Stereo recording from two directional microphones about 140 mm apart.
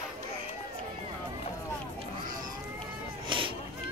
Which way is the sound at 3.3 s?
35° right (ahead or behind).